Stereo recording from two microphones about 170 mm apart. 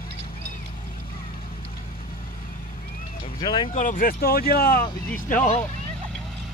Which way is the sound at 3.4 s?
25° left (ahead or behind).